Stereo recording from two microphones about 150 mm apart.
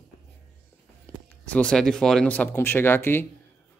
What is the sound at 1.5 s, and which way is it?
Speech, 5° left (ahead or behind).